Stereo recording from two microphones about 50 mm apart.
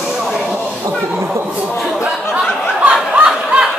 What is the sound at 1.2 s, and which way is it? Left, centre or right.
Speech, right.